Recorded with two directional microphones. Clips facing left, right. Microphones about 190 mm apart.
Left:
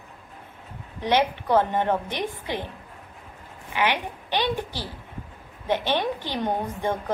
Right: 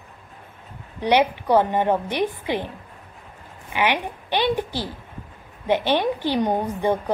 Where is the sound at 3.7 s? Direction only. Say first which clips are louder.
Right 2 dB; 15° right (ahead or behind).